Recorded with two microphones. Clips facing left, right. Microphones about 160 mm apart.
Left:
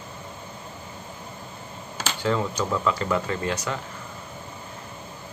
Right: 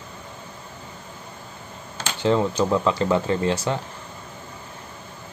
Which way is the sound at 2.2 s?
25° right (ahead or behind).